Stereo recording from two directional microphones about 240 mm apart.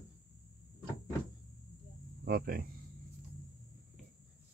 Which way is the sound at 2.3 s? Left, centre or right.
Right.